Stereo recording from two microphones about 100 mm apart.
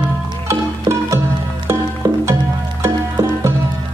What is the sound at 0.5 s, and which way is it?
Music, 30° right (ahead or behind).